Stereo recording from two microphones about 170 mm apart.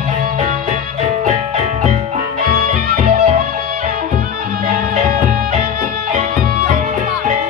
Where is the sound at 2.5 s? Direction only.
55° right (ahead or behind).